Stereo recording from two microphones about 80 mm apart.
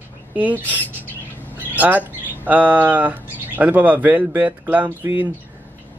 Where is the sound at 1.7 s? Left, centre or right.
Right.